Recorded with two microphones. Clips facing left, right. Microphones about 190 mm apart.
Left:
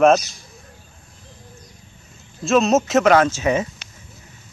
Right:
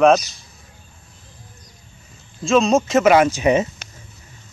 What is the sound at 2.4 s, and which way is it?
Speech, 5° left (ahead or behind).